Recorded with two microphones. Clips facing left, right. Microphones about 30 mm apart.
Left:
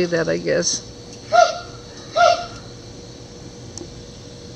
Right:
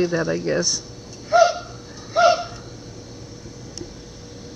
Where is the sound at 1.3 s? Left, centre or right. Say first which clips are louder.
Left 1 dB; centre.